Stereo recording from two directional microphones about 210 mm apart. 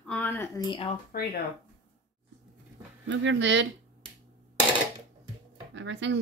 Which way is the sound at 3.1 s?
60° right (ahead or behind).